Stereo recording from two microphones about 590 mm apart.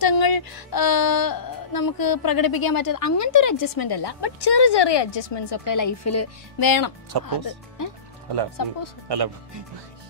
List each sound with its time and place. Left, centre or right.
0.0 s speech: left
6.6 s speech: left
9.1 s speech: right